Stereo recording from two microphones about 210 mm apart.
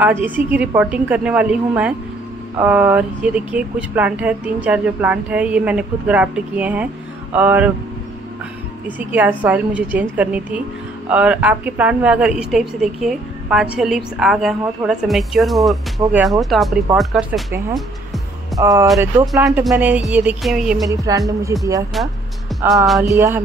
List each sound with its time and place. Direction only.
0.0 s speech: 10° right (ahead or behind)
8.8 s a woman's voice: 10° right (ahead or behind)
18.6 s a woman's voice: 15° right (ahead or behind)
20.9 s speech: 15° right (ahead or behind)
22.5 s music: centre (ahead or behind)
23.0 s speech: 15° right (ahead or behind)